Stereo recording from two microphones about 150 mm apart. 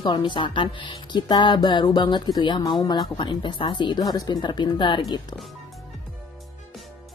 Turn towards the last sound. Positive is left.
turn(degrees=25)  # may be behind; listen again after turning